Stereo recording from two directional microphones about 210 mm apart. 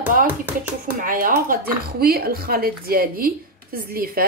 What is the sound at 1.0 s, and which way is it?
Speech, 40° right (ahead or behind).